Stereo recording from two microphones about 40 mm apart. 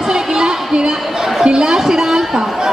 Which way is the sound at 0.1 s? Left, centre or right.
Centre.